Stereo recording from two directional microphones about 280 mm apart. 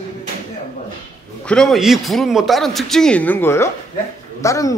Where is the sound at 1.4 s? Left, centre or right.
Centre.